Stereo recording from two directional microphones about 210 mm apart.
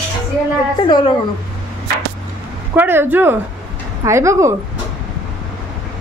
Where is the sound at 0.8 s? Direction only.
20° left (ahead or behind).